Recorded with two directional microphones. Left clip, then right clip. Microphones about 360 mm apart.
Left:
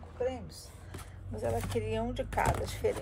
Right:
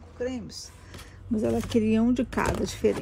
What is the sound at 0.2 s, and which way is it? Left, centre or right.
Speech, right.